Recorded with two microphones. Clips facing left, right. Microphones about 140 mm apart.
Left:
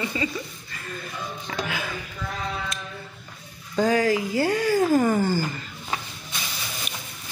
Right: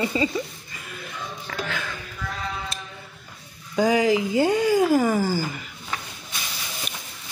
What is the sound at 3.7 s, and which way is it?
Speech, 10° right (ahead or behind).